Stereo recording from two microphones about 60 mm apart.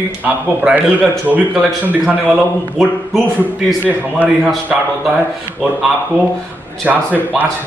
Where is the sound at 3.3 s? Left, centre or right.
Right.